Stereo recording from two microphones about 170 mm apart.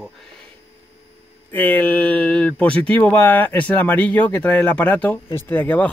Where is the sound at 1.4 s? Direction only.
10° left (ahead or behind).